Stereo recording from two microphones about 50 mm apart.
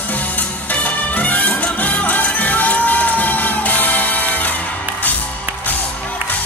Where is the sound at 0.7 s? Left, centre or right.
Left.